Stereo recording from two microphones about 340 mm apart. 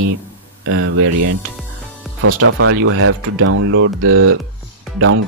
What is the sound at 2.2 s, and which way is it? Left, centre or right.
Speech, right.